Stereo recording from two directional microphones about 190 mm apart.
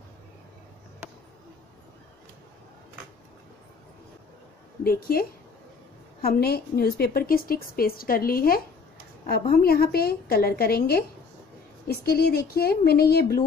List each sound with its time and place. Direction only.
4.8 s a woman's voice: 50° left (ahead or behind)
6.2 s a woman's voice: 55° left (ahead or behind)